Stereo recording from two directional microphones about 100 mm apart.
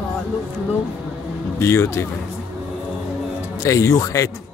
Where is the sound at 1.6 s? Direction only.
30° left (ahead or behind).